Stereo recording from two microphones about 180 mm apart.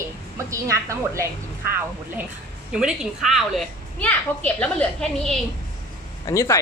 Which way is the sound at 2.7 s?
5° right (ahead or behind).